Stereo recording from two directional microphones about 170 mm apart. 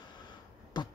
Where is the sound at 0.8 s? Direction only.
25° left (ahead or behind).